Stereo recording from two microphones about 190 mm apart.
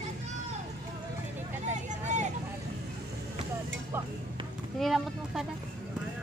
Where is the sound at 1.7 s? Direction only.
40° right (ahead or behind).